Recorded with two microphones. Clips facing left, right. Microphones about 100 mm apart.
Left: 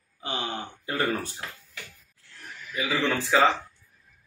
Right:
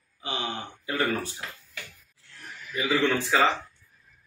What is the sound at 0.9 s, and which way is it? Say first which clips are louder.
Speech: even; 40° left (ahead or behind).